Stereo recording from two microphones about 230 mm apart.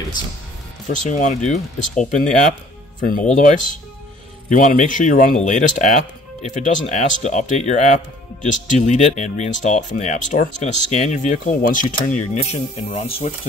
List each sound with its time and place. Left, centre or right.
0.8 s speech: left